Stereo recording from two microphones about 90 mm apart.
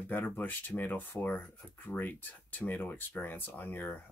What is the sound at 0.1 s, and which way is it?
Speech, 20° left (ahead or behind).